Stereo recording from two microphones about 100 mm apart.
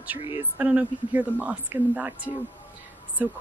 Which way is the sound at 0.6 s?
15° right (ahead or behind).